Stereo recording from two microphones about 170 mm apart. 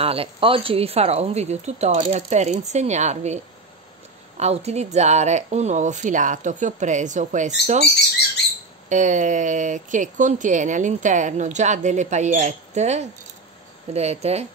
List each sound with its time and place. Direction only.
0.0 s speech: 35° right (ahead or behind)
4.4 s speech: 40° right (ahead or behind)
8.8 s speech: 45° right (ahead or behind)